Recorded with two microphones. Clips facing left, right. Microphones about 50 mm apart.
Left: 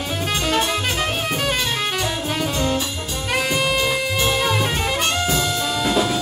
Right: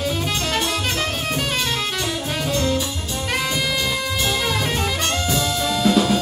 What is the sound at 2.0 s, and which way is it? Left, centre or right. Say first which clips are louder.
Music: left 2 dB; centre.